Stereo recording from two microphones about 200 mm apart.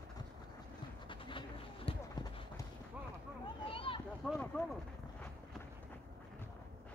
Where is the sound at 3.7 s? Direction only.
25° left (ahead or behind).